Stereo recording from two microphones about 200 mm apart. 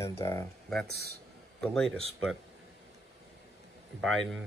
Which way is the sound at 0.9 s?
50° right (ahead or behind).